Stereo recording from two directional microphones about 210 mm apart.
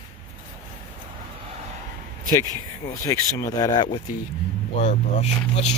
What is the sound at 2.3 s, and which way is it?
Speech, 15° left (ahead or behind).